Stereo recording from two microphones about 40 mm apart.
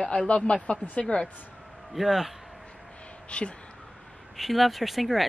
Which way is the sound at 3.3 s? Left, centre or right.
Left.